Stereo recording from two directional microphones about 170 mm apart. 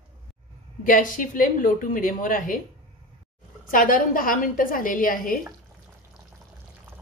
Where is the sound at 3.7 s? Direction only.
55° left (ahead or behind).